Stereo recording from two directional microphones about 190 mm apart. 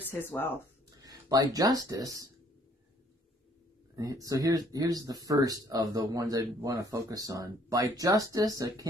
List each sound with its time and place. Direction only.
0.1 s speech: 10° left (ahead or behind)
1.0 s speech: 20° right (ahead or behind)
3.9 s speech: 20° right (ahead or behind)